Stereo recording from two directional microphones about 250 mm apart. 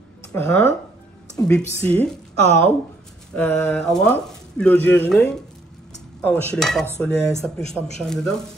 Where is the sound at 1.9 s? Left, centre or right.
Centre.